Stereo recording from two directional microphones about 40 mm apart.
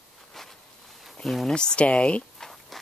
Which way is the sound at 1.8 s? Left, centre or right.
Left.